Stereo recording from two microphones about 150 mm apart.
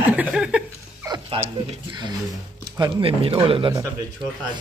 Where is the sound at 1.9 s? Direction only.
30° right (ahead or behind).